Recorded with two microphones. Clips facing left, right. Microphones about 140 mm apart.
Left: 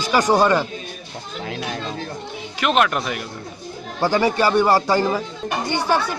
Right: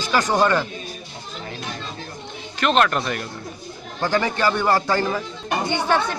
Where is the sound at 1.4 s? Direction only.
80° left.